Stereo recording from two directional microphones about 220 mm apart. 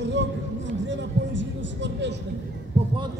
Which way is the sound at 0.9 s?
55° right (ahead or behind).